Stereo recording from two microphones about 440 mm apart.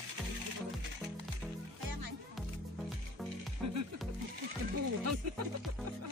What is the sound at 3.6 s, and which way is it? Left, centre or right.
Music, right.